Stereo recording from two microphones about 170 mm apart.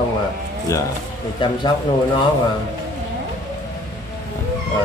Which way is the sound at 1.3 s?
25° left (ahead or behind).